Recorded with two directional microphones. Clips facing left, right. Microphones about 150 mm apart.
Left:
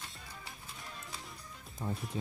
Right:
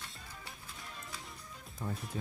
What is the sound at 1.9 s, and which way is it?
Speech, centre (ahead or behind).